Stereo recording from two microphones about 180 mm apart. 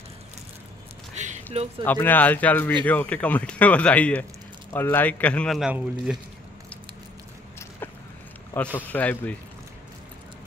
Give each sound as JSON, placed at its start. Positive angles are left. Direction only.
{"t": 1.1, "sound": "a sound", "side_deg": -40}
{"t": 1.9, "sound": "speech", "side_deg": 10}
{"t": 8.7, "sound": "speech", "side_deg": 10}